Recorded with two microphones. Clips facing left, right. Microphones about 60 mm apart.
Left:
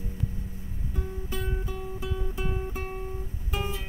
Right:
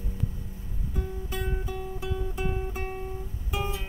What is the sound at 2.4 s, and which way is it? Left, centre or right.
Guitar, centre.